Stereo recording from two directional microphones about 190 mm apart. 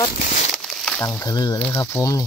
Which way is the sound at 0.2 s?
40° left (ahead or behind).